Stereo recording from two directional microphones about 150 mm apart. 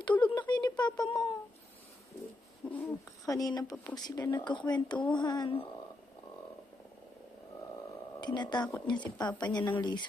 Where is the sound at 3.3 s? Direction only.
25° left (ahead or behind).